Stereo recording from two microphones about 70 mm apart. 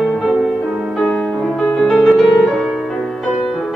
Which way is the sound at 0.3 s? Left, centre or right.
Centre.